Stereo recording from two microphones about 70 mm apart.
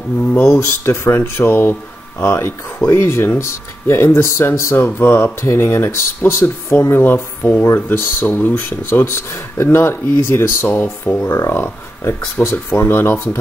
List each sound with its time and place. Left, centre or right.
0.3 s speech: left
4.7 s speech: left
5.4 s speech: left
9.0 s speech: left
10.7 s speech: left